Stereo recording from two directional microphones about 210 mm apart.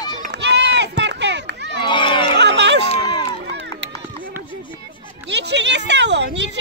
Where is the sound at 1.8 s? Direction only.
20° left (ahead or behind).